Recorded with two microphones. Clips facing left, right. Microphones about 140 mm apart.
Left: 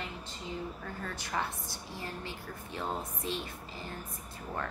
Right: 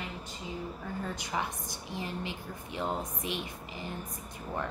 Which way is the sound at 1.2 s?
15° right (ahead or behind).